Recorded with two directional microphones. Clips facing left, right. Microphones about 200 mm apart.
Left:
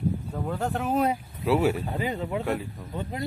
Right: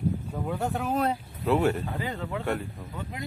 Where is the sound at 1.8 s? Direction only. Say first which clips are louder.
Left 3 dB; 15° left (ahead or behind).